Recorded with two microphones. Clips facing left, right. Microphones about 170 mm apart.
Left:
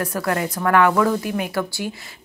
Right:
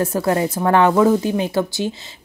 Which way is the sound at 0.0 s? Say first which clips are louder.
Right 5 dB; 25° right (ahead or behind).